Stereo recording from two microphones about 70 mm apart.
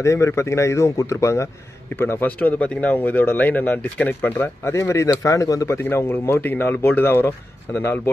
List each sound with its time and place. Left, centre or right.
0.0 s a man's voice: left
2.0 s speech: left
4.7 s a man's voice: left
5.9 s speech: left